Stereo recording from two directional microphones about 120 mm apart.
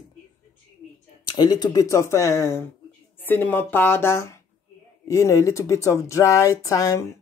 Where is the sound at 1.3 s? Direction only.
35° left (ahead or behind).